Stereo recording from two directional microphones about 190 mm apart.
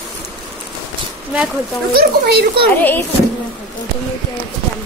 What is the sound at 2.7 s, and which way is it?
Speech, 10° left (ahead or behind).